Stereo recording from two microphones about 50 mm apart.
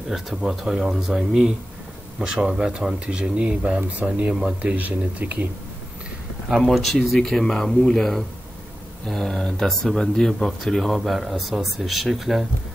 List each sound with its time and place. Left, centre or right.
0.1 s speech: centre; by 5.5 s right
6.6 s speech: centre